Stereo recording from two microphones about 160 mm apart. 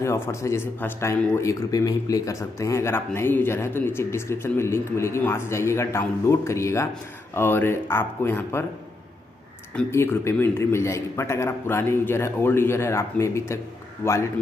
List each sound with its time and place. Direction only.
0.0 s speech: 20° left (ahead or behind)
9.8 s speech: 15° left (ahead or behind)